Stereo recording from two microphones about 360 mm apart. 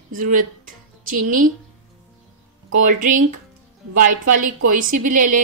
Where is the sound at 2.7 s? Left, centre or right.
Right.